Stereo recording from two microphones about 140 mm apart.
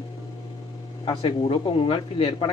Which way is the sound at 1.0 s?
35° left (ahead or behind).